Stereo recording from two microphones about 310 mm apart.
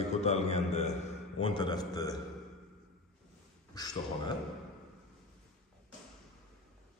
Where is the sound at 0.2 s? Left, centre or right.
Left.